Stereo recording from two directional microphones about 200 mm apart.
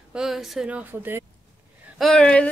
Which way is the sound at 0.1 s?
Centre (ahead or behind).